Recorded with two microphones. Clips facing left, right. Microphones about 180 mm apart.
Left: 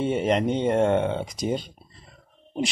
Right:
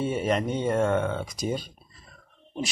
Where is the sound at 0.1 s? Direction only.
25° left (ahead or behind).